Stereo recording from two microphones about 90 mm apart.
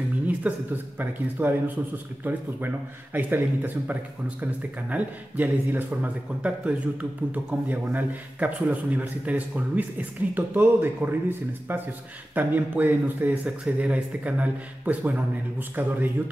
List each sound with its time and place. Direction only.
0.4 s speech: 20° right (ahead or behind)